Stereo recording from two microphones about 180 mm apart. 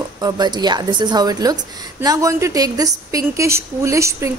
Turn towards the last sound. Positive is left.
turn(degrees=-15)  # may be behind; listen again after turning